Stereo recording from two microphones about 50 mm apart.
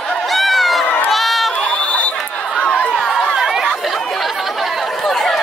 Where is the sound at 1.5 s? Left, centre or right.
Left.